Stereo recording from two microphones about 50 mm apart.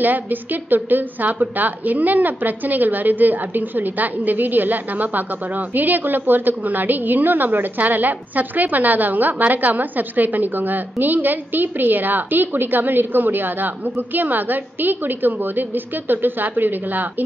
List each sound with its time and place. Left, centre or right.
0.0 s a woman's voice: right